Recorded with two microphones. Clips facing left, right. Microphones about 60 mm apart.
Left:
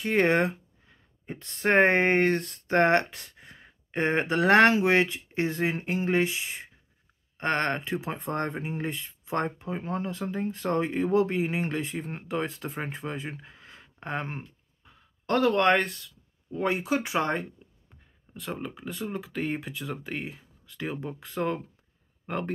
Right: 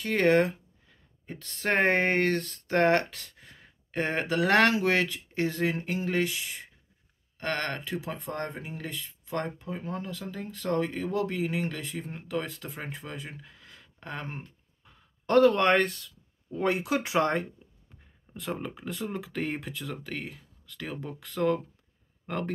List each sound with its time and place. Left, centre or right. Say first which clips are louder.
0.0 s speech: even; left
15.2 s speech: right 1 dB; centre